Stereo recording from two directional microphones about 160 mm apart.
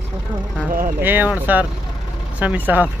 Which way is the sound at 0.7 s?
60° right (ahead or behind).